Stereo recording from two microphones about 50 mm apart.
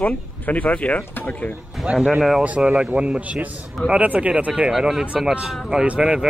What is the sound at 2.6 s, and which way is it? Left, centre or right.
Speech, centre.